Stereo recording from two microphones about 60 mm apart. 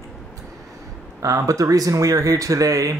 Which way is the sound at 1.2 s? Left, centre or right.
Right.